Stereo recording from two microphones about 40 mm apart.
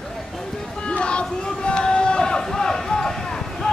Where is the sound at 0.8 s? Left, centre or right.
Left.